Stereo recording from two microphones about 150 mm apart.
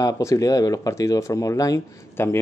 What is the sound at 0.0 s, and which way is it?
A man's voice, 20° left (ahead or behind).